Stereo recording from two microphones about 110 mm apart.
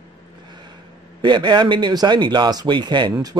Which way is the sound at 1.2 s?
45° right (ahead or behind).